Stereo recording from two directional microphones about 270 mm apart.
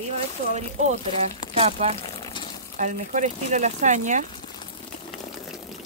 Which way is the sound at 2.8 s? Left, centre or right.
Right.